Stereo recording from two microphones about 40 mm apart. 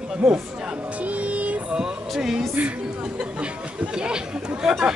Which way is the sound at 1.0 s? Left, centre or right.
Right.